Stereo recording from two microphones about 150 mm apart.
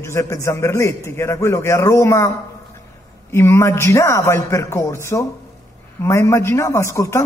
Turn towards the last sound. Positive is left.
turn(degrees=20)  # may be behind; listen again after turning